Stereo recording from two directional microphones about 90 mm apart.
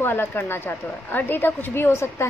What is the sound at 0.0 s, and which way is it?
Speech, 25° left (ahead or behind).